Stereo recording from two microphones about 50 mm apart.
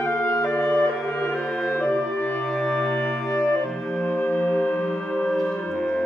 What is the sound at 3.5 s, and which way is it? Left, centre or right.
Music, centre.